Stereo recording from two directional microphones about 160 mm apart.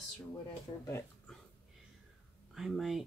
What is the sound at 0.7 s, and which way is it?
Speech, 30° left (ahead or behind).